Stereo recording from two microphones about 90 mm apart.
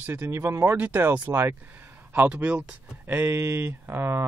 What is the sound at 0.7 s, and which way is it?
Speech, 20° right (ahead or behind).